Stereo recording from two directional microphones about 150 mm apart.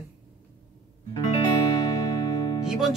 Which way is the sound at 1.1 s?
30° left (ahead or behind).